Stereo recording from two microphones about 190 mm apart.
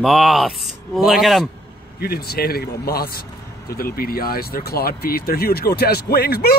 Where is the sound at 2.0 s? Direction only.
55° left (ahead or behind).